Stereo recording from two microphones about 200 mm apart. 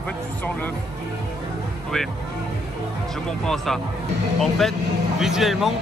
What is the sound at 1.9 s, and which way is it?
Speech, centre (ahead or behind).